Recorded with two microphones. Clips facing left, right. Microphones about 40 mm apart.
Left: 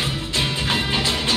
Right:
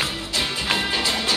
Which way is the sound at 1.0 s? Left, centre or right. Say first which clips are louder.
Left 1 dB; left.